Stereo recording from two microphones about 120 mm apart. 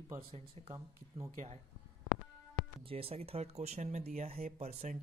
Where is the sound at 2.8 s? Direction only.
55° right (ahead or behind).